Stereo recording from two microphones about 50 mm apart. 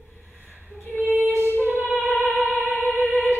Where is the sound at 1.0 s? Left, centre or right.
Right.